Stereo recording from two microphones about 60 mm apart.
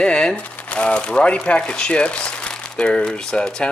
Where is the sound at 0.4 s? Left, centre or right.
Left.